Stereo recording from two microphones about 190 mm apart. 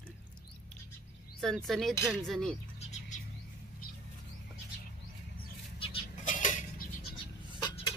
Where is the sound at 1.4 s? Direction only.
Centre (ahead or behind).